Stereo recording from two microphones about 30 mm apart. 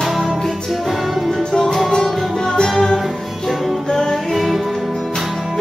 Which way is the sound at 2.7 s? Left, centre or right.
Centre.